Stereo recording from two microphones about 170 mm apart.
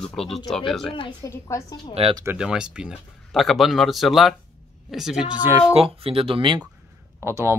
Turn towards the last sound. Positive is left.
turn(degrees=-15)  # may be behind; listen again after turning